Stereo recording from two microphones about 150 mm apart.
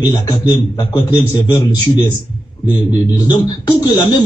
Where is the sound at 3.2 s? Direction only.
25° left (ahead or behind).